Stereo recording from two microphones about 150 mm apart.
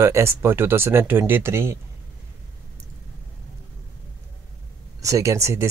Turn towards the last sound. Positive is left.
turn(degrees=-20)  # may be behind; listen again after turning